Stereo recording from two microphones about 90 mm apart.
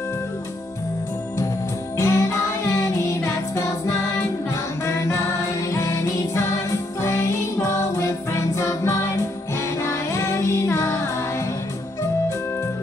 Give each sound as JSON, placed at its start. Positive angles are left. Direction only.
{"t": 2.0, "sound": "music", "side_deg": 35}